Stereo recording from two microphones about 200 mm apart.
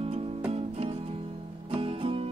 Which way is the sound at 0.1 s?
30° right (ahead or behind).